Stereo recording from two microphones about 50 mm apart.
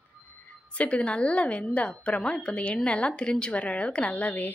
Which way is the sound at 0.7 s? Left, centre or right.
Left.